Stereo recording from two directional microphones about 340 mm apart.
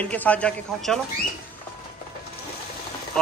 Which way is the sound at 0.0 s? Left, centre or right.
Centre.